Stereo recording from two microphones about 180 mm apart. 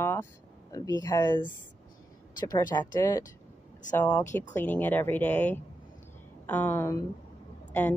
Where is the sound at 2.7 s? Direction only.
20° left (ahead or behind).